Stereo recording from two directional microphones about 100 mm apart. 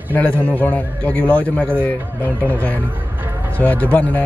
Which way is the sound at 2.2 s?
20° right (ahead or behind).